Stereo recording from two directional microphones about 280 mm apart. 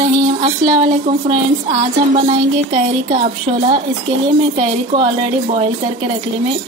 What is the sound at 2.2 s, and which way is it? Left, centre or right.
Speech, centre.